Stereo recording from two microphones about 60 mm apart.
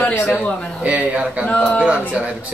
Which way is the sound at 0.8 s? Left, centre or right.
Right.